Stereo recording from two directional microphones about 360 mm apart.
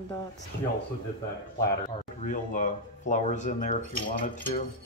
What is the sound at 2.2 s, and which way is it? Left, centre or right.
Speech, left.